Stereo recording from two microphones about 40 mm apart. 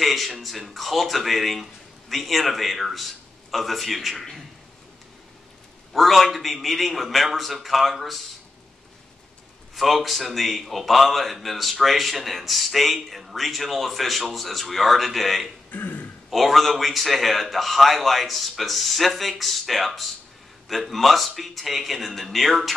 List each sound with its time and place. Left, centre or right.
0.0 s speech: centre
5.9 s speech: centre
9.8 s speech: centre
15.7 s speech: left
16.3 s speech: centre